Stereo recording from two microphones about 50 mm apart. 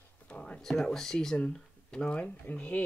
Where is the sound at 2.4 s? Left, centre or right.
Left.